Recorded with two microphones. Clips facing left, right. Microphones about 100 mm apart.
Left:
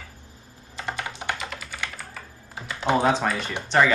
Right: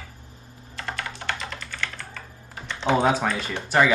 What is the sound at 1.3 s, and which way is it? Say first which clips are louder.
Computer keyboard: even; 5° left (ahead or behind).